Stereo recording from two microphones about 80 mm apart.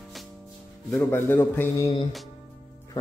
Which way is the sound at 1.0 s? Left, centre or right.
Left.